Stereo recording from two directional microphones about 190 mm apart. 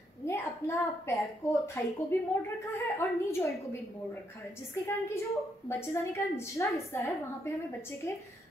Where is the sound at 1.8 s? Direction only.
10° left (ahead or behind).